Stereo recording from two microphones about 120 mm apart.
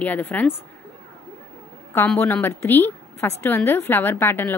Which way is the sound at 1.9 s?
15° left (ahead or behind).